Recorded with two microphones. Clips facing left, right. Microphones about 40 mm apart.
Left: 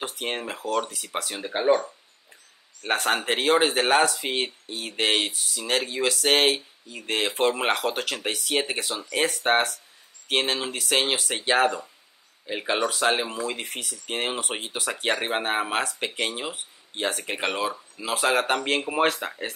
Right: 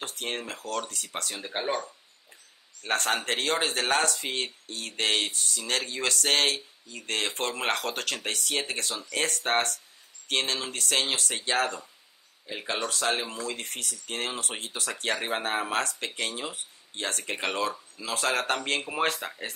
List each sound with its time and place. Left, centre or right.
0.0 s speech: centre
2.9 s speech: centre
5.3 s speech: centre